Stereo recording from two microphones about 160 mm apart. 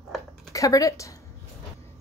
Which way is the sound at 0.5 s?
20° left (ahead or behind).